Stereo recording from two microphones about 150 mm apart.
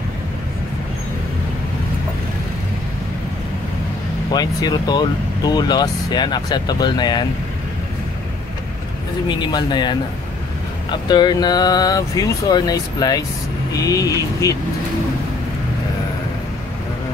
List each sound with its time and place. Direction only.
4.3 s speech: 25° left (ahead or behind)
9.3 s speech: 30° left (ahead or behind)